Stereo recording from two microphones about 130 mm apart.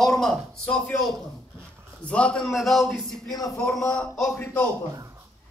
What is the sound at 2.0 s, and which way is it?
A man's voice, 10° left (ahead or behind).